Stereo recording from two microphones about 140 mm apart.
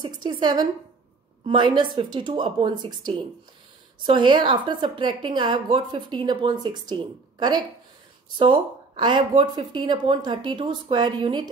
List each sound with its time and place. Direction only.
0.0 s a woman's voice: 35° right (ahead or behind)